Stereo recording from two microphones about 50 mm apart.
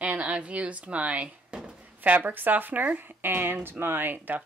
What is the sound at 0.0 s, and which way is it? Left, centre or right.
Speech, right.